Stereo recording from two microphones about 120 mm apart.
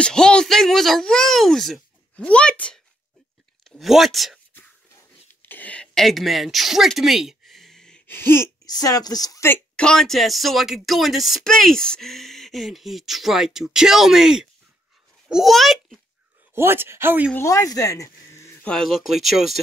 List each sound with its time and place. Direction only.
0.0 s speech: 5° left (ahead or behind)
5.3 s a sound: 15° left (ahead or behind)
8.1 s a sound: 20° left (ahead or behind)
8.6 s a woman's voice: 30° left (ahead or behind)
9.5 s a child's voice: 5° left (ahead or behind)
16.5 s speech: 20° right (ahead or behind)
17.3 s speech: 25° left (ahead or behind)
18.7 s speech: centre (ahead or behind)